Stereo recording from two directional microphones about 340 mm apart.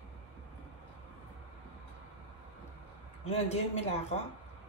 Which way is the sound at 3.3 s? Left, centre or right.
Centre.